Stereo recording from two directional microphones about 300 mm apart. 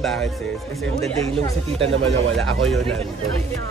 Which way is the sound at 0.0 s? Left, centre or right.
Centre.